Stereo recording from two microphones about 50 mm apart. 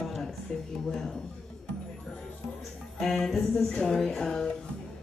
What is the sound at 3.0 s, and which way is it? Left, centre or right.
Speech, centre.